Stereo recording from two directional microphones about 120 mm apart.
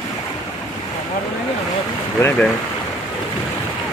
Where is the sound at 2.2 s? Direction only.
25° left (ahead or behind).